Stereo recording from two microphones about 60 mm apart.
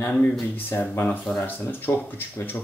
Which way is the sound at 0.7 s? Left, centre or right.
Left.